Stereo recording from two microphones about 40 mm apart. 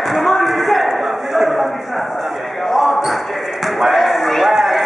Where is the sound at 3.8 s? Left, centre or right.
Centre.